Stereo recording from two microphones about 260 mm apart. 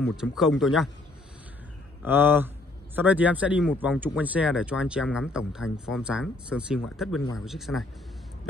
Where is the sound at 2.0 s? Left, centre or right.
Centre.